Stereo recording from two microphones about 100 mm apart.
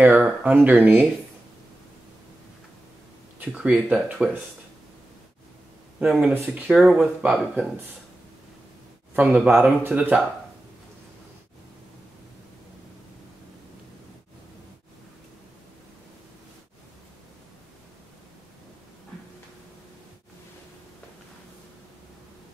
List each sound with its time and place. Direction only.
0.0 s speech: 15° right (ahead or behind)
3.3 s speech: 15° right (ahead or behind)
6.2 s speech: 20° right (ahead or behind)
6.7 s speech: 5° right (ahead or behind)
9.1 s speech: 15° right (ahead or behind)